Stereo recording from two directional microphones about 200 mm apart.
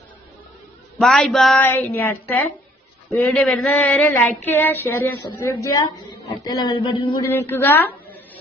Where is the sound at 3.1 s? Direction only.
5° left (ahead or behind); by 7.2 s 25° left (ahead or behind).